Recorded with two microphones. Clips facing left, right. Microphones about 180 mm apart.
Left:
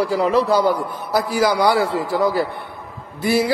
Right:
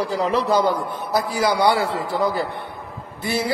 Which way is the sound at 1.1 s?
25° right (ahead or behind).